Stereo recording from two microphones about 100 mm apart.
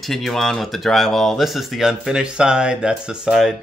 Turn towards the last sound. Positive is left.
turn(degrees=-5)  # may be behind; listen again after turning